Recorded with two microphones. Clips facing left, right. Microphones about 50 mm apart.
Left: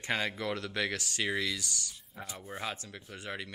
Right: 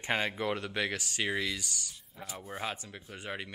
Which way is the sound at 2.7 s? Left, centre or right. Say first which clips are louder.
Right 1 dB; centre.